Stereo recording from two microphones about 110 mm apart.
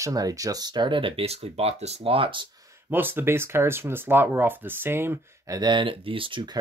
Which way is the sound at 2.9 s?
20° right (ahead or behind).